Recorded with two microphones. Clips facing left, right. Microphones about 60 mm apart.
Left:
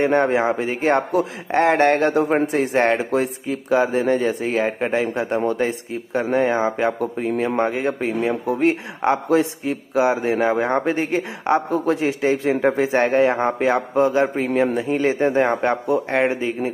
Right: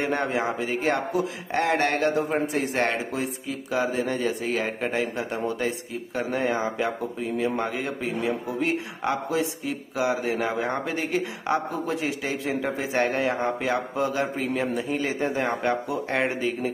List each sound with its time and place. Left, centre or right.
0.0 s a man's voice: left
3.1 s speech: left
3.7 s a man's voice: left
7.0 s a man's voice: left
11.7 s a man's voice: left
16.1 s a man's voice: left